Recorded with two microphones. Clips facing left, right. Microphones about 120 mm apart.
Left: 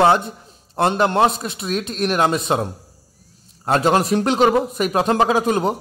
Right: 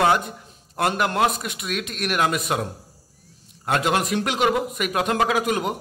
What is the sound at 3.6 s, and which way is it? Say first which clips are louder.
A man's voice: left 5 dB; 35° left (ahead or behind).